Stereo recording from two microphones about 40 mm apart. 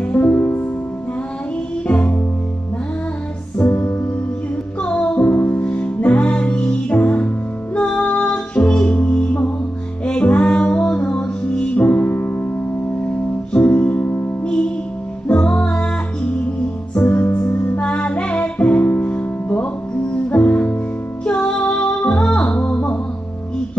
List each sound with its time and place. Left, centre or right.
0.0 s music: left
1.9 s music: left
3.5 s music: left
5.3 s music: left
5.6 s music: left
13.0 s music: left
14.0 s music: left
14.4 s music: left